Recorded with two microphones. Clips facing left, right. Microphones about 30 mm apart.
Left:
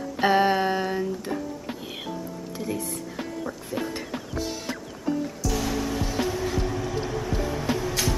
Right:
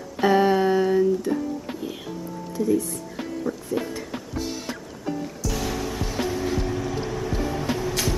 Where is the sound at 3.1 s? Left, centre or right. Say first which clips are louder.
Right 6 dB; centre.